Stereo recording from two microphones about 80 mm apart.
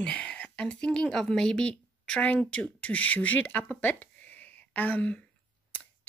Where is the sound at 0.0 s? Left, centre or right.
Centre.